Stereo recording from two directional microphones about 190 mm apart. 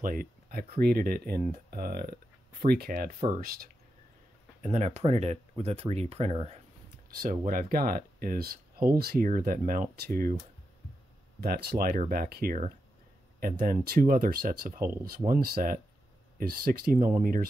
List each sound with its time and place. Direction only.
0.0 s speech: 45° right (ahead or behind)
4.6 s speech: 35° right (ahead or behind)
7.2 s speech: 50° right (ahead or behind)
11.4 s speech: 55° right (ahead or behind)